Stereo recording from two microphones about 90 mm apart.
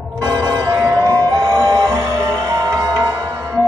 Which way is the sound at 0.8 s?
35° right (ahead or behind).